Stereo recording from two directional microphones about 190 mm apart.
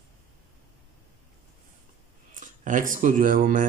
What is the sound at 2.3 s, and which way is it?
Speech, 45° right (ahead or behind).